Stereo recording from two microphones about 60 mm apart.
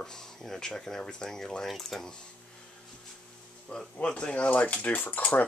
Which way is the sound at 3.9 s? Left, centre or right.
Centre.